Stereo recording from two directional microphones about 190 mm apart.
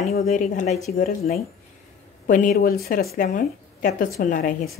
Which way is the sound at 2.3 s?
45° left (ahead or behind).